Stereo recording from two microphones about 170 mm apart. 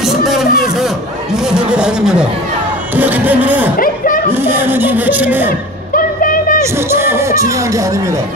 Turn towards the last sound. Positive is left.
turn(degrees=-20)  # may be behind; listen again after turning